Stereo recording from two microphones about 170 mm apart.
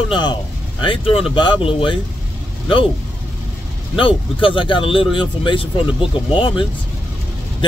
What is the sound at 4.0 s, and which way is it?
Speech, 30° left (ahead or behind).